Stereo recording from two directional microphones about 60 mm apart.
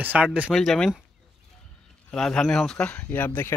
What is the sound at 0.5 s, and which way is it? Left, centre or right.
Speech, centre.